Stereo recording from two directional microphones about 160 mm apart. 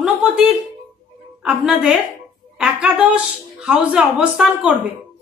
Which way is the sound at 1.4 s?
5° right (ahead or behind).